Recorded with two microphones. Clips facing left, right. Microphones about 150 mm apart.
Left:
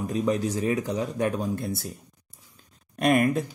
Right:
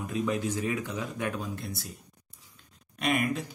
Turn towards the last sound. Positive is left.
turn(degrees=50)  # may be behind; listen again after turning